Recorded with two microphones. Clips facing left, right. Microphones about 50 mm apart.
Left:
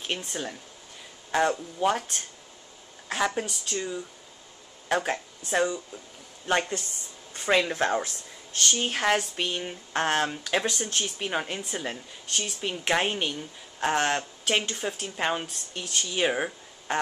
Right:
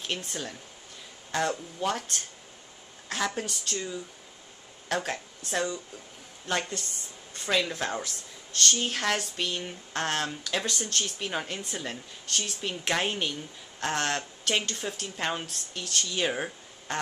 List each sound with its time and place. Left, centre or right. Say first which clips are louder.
1.3 s speech: left 4 dB; centre